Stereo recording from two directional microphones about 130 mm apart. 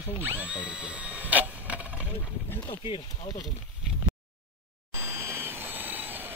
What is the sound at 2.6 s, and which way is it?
Speech, 35° left (ahead or behind).